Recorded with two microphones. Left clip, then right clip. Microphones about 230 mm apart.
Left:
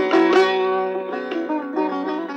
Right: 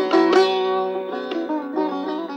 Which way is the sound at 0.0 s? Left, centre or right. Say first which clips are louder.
Even; right.